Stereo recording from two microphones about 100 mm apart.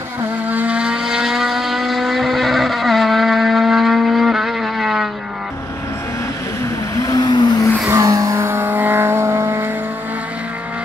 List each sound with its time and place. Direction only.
0.5 s vehicle: 15° right (ahead or behind)
7.0 s vehicle: 40° left (ahead or behind)
7.8 s vehicle: 30° right (ahead or behind)
8.4 s vehicle: 20° right (ahead or behind)